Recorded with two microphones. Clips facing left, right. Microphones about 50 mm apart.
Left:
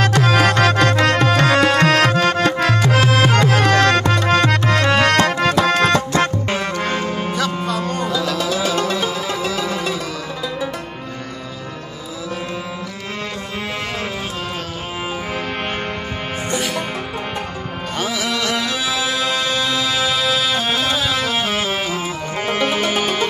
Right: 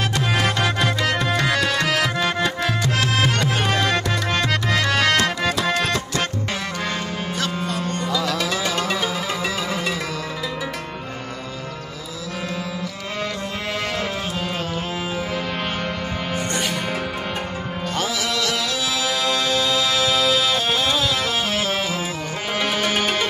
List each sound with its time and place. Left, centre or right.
0.0 s music: left
3.3 s music: left
4.0 s music: left
5.4 s music: left
6.5 s music: left
8.1 s music: centre
17.9 s music: centre
22.6 s music: left
22.8 s music: centre